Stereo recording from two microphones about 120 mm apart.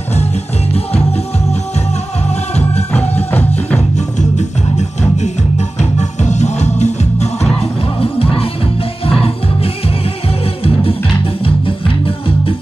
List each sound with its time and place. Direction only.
3.9 s music: 75° left (ahead or behind)
8.0 s music: 50° left (ahead or behind)
10.6 s music: 50° left (ahead or behind)